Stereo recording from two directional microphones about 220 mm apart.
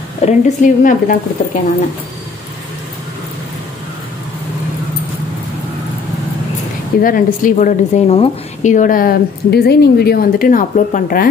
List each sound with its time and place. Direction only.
0.2 s a woman's voice: 35° left (ahead or behind)
7.0 s a woman's voice: 40° left (ahead or behind)